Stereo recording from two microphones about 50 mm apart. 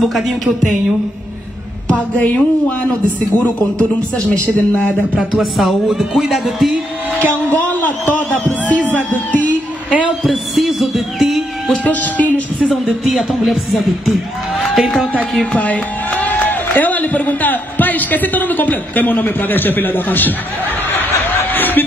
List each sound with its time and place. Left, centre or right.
2.1 s a man's voice: left
5.3 s speech: centre
7.5 s a man's voice: left
10.2 s music: centre
11.8 s a man's voice: left
12.8 s speech: centre
15.5 s music: left
16.4 s a man's voice: left
21.5 s a sound: left